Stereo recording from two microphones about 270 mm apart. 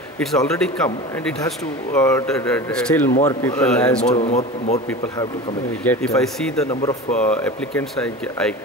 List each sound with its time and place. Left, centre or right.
0.2 s speech: centre
2.0 s speech: centre
4.1 s a man's voice: left
5.9 s speech: centre
6.7 s speech: centre